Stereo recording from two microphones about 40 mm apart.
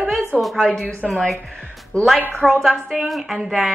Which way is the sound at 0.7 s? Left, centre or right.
Centre.